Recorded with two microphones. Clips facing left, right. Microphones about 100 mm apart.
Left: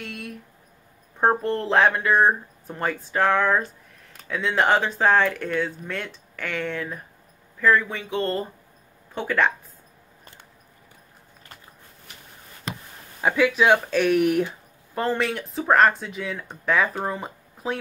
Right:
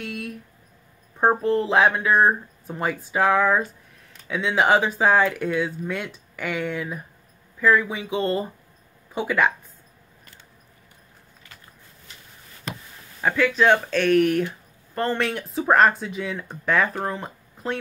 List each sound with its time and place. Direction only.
0.0 s a sound: centre (ahead or behind)
1.2 s speech: centre (ahead or behind)
13.2 s speech: 10° left (ahead or behind)